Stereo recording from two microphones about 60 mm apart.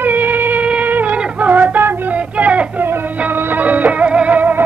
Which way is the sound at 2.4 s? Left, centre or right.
Right.